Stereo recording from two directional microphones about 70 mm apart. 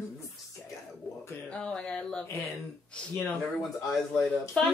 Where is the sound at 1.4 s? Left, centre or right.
Centre.